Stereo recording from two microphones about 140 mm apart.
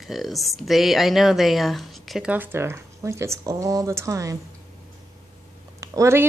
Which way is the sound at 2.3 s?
15° right (ahead or behind).